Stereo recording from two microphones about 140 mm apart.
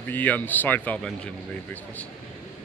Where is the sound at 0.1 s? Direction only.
10° left (ahead or behind).